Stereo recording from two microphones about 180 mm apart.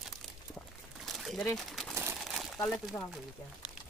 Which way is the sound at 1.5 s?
Centre (ahead or behind).